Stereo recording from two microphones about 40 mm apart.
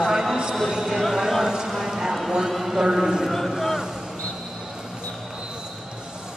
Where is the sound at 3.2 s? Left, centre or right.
Centre.